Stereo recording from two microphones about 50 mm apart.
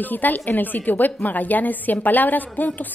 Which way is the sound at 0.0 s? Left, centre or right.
Left.